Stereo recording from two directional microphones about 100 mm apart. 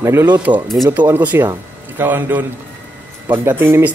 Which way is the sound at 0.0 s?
25° right (ahead or behind).